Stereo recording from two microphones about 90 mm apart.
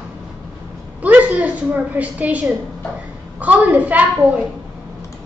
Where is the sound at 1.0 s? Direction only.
15° right (ahead or behind).